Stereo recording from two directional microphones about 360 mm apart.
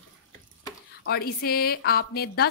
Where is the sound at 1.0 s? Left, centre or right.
Left.